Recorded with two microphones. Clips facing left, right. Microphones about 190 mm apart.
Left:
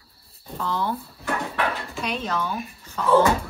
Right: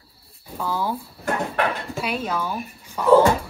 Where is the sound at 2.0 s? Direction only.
10° right (ahead or behind).